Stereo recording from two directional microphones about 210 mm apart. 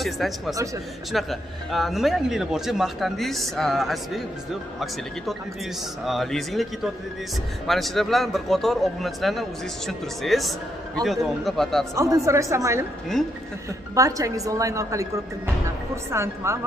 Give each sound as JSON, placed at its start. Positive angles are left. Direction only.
{"t": 0.0, "sound": "speech", "side_deg": 0}
{"t": 6.0, "sound": "speech", "side_deg": 0}
{"t": 11.9, "sound": "a woman's voice", "side_deg": -15}
{"t": 13.9, "sound": "a woman's voice", "side_deg": -15}